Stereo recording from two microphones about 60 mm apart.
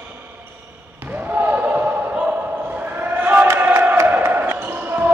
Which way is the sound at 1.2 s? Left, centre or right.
Right.